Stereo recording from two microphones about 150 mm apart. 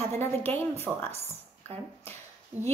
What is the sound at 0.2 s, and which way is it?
Speech, 15° left (ahead or behind).